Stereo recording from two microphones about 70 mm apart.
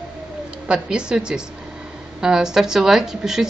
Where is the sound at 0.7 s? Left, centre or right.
Centre.